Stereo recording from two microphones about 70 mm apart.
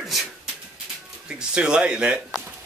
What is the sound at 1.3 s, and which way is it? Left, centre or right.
Speech, centre.